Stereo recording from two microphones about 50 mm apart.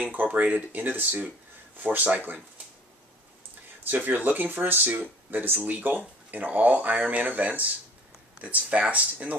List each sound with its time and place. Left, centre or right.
0.0 s speech: right
3.8 s speech: right